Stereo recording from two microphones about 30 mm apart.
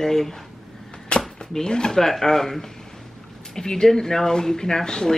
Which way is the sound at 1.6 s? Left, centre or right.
Left.